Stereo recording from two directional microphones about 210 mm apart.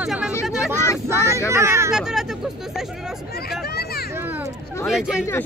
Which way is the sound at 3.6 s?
50° left (ahead or behind).